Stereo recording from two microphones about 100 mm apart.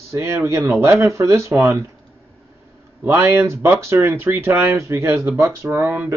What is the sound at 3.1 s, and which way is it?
Speech, 25° right (ahead or behind).